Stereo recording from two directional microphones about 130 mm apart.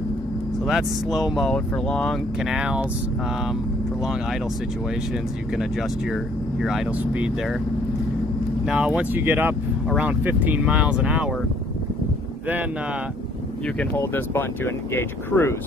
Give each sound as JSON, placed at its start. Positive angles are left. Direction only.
{"t": 0.7, "sound": "speech", "side_deg": 0}
{"t": 2.4, "sound": "speech", "side_deg": -5}
{"t": 4.0, "sound": "speech", "side_deg": -5}
{"t": 8.6, "sound": "speech", "side_deg": -10}
{"t": 13.7, "sound": "speech", "side_deg": 15}